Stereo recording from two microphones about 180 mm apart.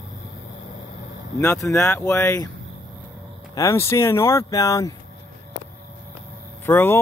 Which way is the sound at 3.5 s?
15° left (ahead or behind).